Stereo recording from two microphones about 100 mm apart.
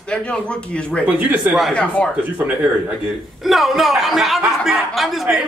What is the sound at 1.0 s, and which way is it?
Speech, 15° right (ahead or behind).